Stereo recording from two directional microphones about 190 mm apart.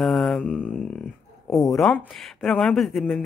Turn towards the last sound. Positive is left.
turn(degrees=0)  # may be behind; listen again after turning